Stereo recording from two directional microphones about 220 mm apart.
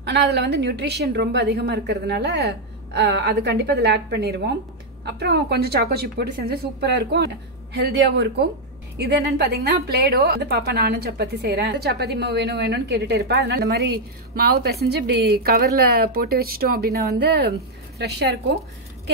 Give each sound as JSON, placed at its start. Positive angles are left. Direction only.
{"t": 0.0, "sound": "a woman's voice", "side_deg": -50}